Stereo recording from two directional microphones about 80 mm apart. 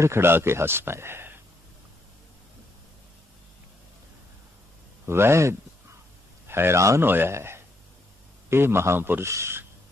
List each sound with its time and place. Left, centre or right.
0.0 s speech: right
5.0 s speech: right